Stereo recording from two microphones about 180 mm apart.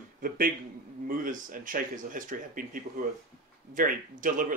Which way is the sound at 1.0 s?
50° right (ahead or behind).